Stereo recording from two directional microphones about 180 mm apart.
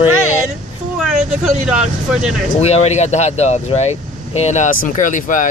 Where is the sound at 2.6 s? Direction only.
35° left (ahead or behind).